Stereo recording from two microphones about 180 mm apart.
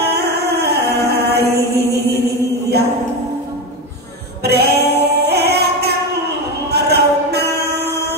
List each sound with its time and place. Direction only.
0.1 s chant: 65° right (ahead or behind)
4.4 s music: 65° right (ahead or behind)
6.7 s a sound: 65° right (ahead or behind)